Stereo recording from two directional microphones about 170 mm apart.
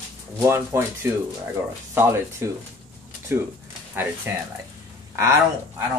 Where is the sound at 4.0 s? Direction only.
10° right (ahead or behind).